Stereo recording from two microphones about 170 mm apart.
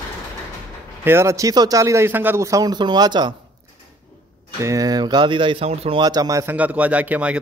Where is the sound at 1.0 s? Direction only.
15° right (ahead or behind).